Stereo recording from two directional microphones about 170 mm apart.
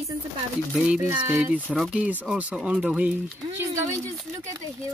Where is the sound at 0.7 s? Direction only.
5° right (ahead or behind).